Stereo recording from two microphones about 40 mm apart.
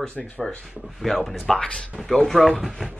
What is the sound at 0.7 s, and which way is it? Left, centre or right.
Speech, centre.